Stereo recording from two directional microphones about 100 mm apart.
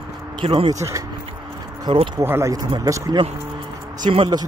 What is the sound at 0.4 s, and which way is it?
Speech, 60° right (ahead or behind).